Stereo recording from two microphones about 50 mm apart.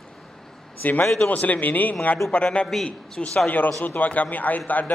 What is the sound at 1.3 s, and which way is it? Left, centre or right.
A man's voice, left.